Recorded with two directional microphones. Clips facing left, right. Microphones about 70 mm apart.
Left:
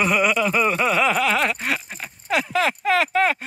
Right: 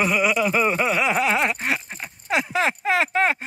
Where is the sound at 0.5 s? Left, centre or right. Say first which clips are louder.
Even; right.